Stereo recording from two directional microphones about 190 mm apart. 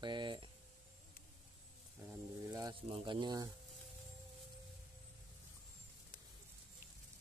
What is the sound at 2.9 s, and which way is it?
Speech, 25° right (ahead or behind).